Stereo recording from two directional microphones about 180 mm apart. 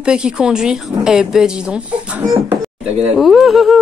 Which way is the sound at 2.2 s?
25° right (ahead or behind).